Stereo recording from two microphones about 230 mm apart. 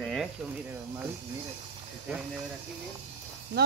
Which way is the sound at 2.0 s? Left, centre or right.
Centre.